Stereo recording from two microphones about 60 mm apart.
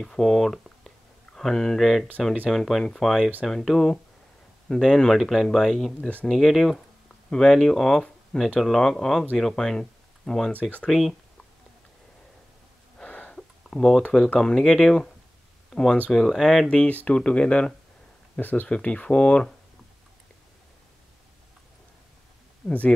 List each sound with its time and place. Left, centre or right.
0.0 s speech: centre
5.9 s speech: left
6.2 s speech: centre
13.0 s a sound: left
13.4 s a sound: centre
14.1 s speech: centre
16.6 s speech: left
22.6 s speech: centre